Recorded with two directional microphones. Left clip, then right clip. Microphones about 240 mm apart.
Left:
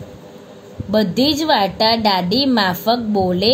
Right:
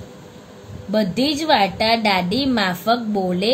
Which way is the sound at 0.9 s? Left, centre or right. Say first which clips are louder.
Left 4 dB; centre.